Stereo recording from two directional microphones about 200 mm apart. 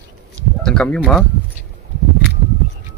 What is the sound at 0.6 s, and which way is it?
Speech, 5° left (ahead or behind).